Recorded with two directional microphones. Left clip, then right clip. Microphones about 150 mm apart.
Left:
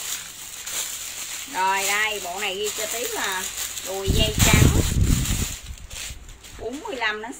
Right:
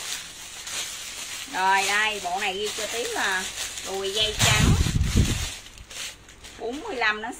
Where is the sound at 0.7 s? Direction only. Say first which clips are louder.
Left 1 dB; 35° left (ahead or behind).